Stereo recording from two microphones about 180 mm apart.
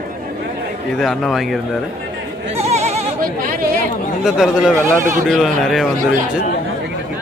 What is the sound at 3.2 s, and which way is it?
Chatter, 50° right (ahead or behind).